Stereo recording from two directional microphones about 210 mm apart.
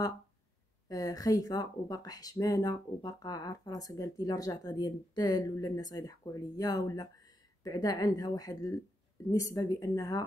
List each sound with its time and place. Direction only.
0.8 s speech: 15° left (ahead or behind)